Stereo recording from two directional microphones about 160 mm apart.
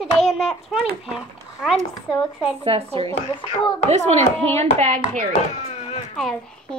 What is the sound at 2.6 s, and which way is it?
A child's voice, 35° right (ahead or behind).